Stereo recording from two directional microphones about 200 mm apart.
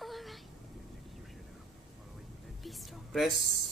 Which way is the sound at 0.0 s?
Centre (ahead or behind).